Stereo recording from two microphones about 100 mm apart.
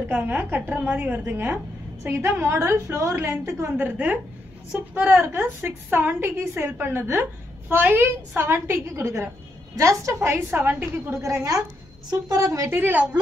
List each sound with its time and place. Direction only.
0.1 s a woman's voice: 20° right (ahead or behind)
12.7 s a woman's voice: 15° right (ahead or behind)